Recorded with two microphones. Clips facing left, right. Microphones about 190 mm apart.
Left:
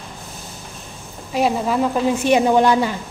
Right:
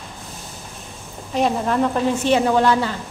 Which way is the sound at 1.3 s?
5° left (ahead or behind).